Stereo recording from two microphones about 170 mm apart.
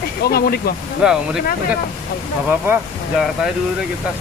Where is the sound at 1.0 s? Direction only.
5° right (ahead or behind).